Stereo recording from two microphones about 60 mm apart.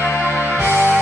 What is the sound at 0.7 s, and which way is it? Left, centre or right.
Music, right.